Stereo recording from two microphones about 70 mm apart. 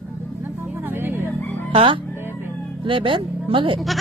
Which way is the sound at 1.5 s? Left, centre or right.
Left.